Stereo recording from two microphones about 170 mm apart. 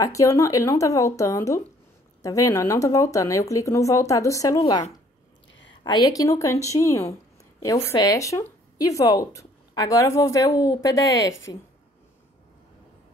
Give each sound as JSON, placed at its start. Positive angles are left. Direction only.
{"t": 0.0, "sound": "a woman's voice", "side_deg": 20}
{"t": 5.5, "sound": "a sound", "side_deg": 90}
{"t": 5.9, "sound": "a woman's voice", "side_deg": 20}